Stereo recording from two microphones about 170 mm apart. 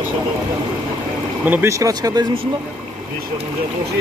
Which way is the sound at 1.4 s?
10° right (ahead or behind).